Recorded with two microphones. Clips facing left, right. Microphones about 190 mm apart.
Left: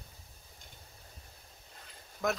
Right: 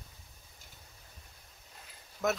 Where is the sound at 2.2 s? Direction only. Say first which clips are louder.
Right 1 dB; 5° right (ahead or behind).